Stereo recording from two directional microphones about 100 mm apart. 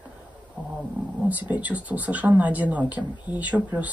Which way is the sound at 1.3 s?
15° right (ahead or behind).